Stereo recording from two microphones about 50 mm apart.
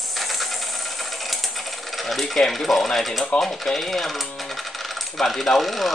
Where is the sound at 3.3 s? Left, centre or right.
Centre.